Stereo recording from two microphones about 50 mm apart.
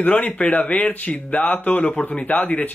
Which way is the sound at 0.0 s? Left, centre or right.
Left.